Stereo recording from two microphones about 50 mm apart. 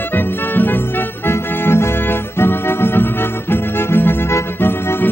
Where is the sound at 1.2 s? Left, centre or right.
Left.